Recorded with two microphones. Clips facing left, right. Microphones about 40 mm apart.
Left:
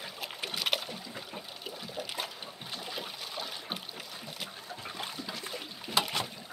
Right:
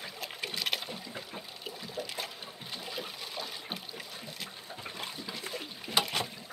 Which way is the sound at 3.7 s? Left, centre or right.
Centre.